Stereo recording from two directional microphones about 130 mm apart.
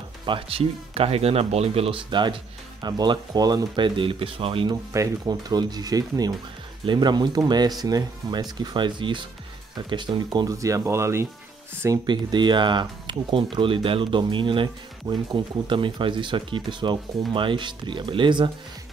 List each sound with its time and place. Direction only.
0.2 s speech: 45° right (ahead or behind)
4.6 s speech: 25° right (ahead or behind)
12.1 s speech: 35° right (ahead or behind)